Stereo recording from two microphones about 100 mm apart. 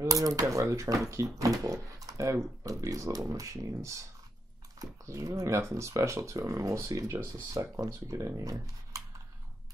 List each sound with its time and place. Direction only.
0.0 s speech: 35° right (ahead or behind)